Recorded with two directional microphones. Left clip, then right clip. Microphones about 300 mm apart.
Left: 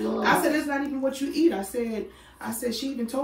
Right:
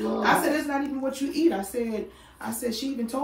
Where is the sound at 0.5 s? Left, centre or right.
Left.